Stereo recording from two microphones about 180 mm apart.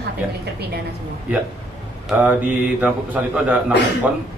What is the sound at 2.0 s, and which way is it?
Mantra, 10° right (ahead or behind).